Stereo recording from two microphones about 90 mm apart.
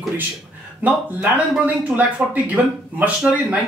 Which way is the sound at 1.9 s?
15° right (ahead or behind).